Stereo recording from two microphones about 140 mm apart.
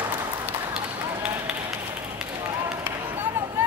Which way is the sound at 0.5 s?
10° right (ahead or behind).